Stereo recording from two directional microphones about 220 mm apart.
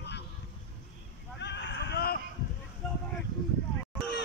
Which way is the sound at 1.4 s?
50° left (ahead or behind).